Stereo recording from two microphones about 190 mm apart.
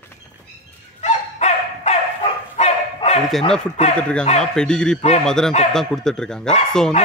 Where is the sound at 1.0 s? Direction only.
35° left (ahead or behind).